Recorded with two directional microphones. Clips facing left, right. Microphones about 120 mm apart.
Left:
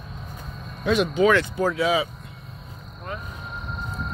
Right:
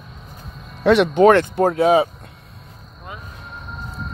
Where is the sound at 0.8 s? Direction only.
65° right (ahead or behind); by 2.0 s 50° right (ahead or behind).